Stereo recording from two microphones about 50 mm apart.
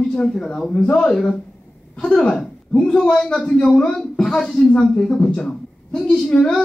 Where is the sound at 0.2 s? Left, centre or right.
Centre.